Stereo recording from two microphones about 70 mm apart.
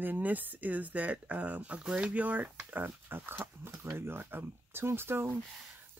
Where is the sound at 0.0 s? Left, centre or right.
Right.